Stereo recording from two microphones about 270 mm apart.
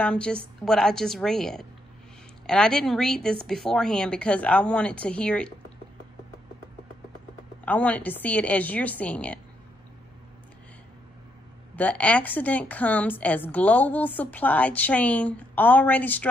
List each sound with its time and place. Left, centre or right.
0.0 s a woman's voice: centre
7.6 s a woman's voice: centre
11.7 s a woman's voice: centre